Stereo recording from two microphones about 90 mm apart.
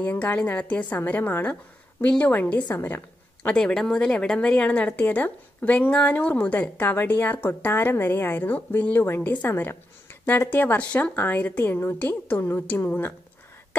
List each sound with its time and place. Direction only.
0.0 s a woman's voice: 20° left (ahead or behind)
3.4 s speech: 10° left (ahead or behind)